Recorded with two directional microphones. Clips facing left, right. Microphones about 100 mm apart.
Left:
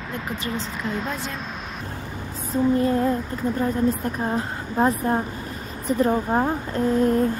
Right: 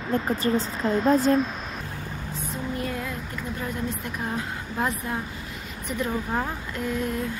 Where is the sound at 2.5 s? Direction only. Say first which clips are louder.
Left 12 dB; 35° left (ahead or behind).